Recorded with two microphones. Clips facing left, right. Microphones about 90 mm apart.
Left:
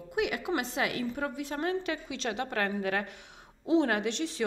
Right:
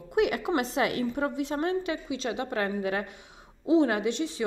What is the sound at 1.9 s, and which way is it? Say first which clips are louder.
A woman's voice: right 3 dB; 10° right (ahead or behind).